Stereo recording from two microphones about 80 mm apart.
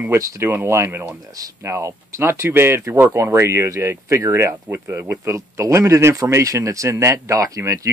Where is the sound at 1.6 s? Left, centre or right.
Right.